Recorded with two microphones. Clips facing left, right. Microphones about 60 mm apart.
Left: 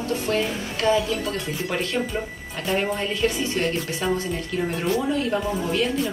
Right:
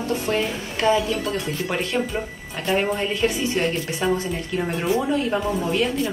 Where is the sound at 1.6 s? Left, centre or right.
Centre.